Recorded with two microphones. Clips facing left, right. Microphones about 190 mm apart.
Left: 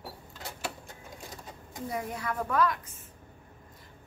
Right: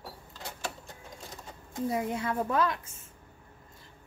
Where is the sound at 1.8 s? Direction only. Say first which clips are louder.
Right 5 dB; 25° right (ahead or behind).